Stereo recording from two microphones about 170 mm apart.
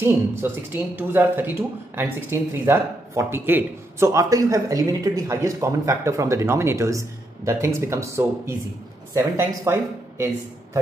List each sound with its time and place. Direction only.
0.4 s speech: 15° right (ahead or behind)